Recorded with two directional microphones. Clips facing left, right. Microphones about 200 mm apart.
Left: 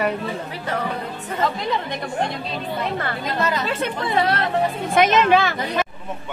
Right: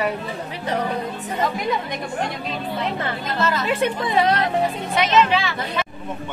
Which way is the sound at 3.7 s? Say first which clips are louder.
Right 2 dB; 15° right (ahead or behind).